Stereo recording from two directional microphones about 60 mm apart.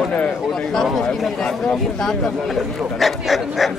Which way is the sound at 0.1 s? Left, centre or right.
Left.